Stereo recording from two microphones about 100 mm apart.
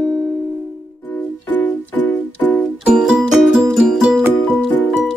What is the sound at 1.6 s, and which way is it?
Music, 15° left (ahead or behind).